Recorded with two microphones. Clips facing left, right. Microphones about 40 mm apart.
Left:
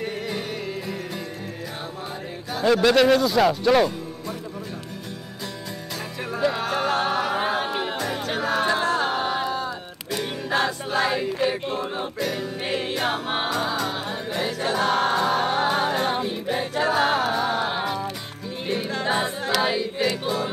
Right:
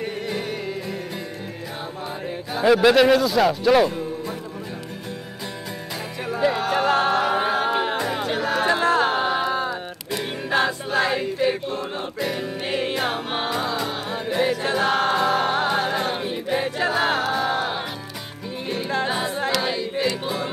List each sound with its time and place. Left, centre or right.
2.5 s speech: centre
6.2 s music: centre
7.6 s music: right
8.4 s music: centre
8.8 s music: right
10.9 s choir: centre
11.7 s speech: centre
12.2 s music: centre
13.1 s music: centre
13.7 s music: centre
14.6 s choir: centre
15.6 s music: centre
19.0 s a capella: centre
19.5 s choir: centre